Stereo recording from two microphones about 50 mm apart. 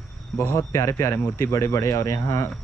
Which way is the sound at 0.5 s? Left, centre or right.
Left.